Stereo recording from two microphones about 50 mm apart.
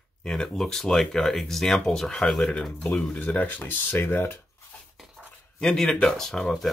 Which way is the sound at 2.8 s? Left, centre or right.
Left.